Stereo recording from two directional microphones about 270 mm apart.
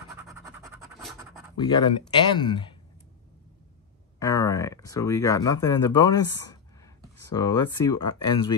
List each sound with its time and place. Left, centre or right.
0.1 s scratch: centre
1.6 s speech: centre
4.2 s speech: centre